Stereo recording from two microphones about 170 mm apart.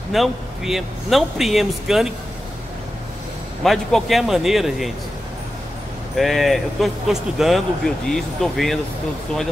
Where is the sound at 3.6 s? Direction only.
Centre (ahead or behind).